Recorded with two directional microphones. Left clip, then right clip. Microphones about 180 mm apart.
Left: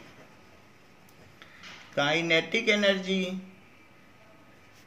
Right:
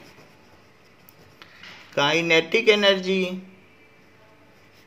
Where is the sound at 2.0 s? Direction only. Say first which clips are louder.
Right 6 dB; 55° right (ahead or behind).